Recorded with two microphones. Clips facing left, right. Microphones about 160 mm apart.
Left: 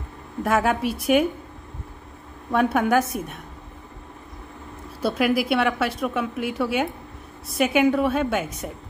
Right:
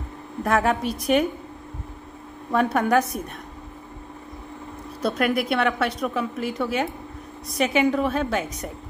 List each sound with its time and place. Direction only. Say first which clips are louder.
0.4 s a woman's voice: even; centre (ahead or behind)
2.5 s a woman's voice: even; centre (ahead or behind)
5.0 s a woman's voice: left 1 dB; 5° left (ahead or behind)